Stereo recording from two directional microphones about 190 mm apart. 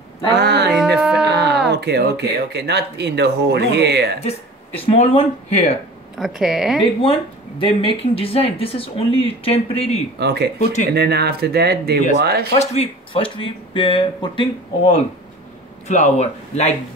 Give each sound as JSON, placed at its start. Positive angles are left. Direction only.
{"t": 0.4, "sound": "speech", "side_deg": -60}
{"t": 0.9, "sound": "a sound", "side_deg": -5}
{"t": 1.3, "sound": "a sound", "side_deg": -60}
{"t": 1.7, "sound": "speech", "side_deg": -60}
{"t": 4.8, "sound": "speech", "side_deg": 30}
{"t": 6.1, "sound": "speech", "side_deg": 0}
{"t": 7.0, "sound": "speech", "side_deg": 30}
{"t": 10.1, "sound": "speech", "side_deg": -60}
{"t": 10.6, "sound": "speech", "side_deg": 40}
{"t": 10.9, "sound": "speech", "side_deg": -60}
{"t": 12.5, "sound": "speech", "side_deg": 30}
{"t": 15.9, "sound": "speech", "side_deg": 35}